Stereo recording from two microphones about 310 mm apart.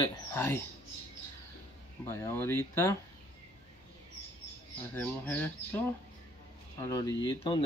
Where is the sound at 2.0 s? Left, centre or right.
Centre.